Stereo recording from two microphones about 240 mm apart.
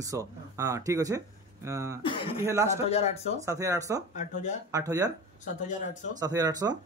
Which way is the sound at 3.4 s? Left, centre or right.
Centre.